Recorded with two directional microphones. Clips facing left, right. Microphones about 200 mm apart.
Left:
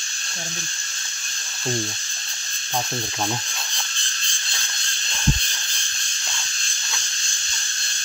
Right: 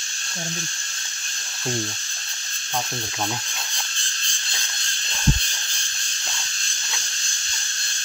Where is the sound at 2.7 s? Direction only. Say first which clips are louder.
Left 2 dB; 10° left (ahead or behind).